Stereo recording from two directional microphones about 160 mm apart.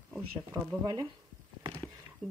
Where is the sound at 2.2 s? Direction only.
10° left (ahead or behind).